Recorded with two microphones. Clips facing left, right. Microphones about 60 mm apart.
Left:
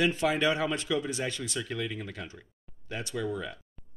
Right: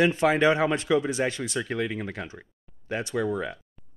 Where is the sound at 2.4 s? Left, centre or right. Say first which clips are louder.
Right 5 dB; right.